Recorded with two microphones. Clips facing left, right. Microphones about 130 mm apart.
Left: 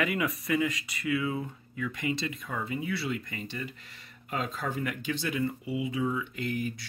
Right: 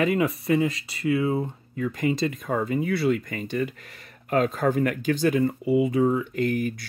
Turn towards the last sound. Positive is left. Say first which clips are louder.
# right 8 dB
turn(degrees=-50)  # may be behind; listen again after turning